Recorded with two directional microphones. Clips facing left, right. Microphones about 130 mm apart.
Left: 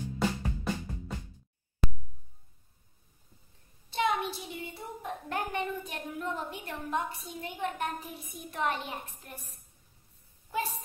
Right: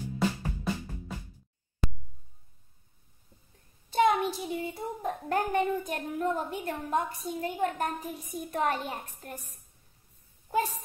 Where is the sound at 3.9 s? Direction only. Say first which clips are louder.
Right 5 dB; 40° right (ahead or behind).